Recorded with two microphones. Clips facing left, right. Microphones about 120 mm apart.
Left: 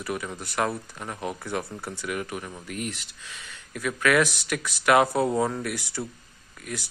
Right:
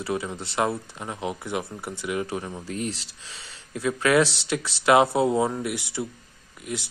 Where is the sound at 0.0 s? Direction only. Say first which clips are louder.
Right 3 dB; 25° right (ahead or behind).